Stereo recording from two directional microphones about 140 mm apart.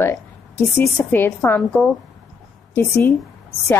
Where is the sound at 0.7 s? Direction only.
10° left (ahead or behind).